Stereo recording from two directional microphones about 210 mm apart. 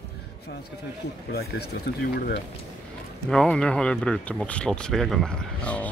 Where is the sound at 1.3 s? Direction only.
50° left (ahead or behind).